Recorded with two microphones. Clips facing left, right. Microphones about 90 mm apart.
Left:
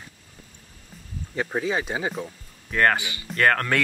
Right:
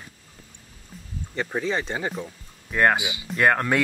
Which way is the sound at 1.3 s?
10° left (ahead or behind).